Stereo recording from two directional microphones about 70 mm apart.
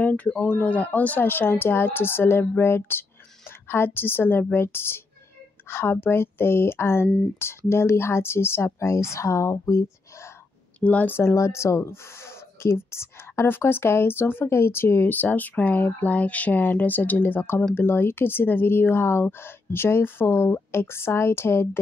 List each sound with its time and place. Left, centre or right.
0.0 s speech: left
10.8 s speech: left
11.1 s speech: left